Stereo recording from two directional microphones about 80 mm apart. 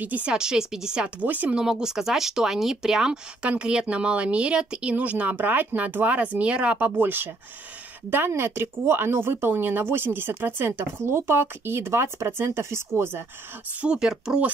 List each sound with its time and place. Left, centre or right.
0.0 s speech: centre
1.2 s speech: right
1.6 s speech: centre
7.0 s speech: right
13.7 s speech: centre